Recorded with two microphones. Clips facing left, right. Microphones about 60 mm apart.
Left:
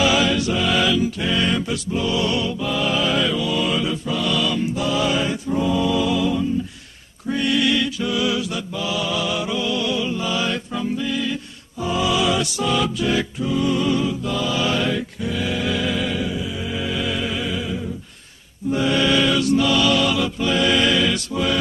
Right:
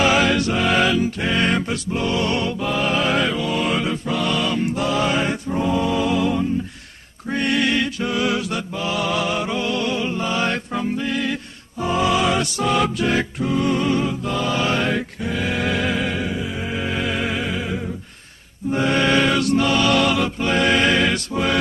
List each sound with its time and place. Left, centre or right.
0.0 s music: right
4.6 s mantra: right
5.6 s music: right
7.3 s mantra: right
11.8 s music: right
18.7 s chant: right
21.3 s mantra: right